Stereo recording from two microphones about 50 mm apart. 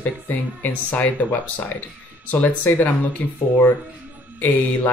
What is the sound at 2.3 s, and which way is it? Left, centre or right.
Speech, left.